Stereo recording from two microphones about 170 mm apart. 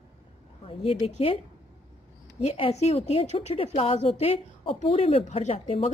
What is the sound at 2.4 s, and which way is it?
A woman's voice, 35° left (ahead or behind).